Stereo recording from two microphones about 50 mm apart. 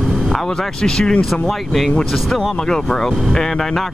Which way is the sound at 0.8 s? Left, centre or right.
Centre.